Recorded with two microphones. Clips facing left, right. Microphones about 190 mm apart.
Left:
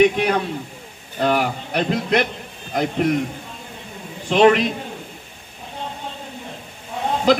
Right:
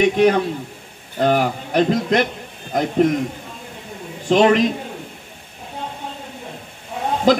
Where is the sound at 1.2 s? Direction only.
45° right (ahead or behind).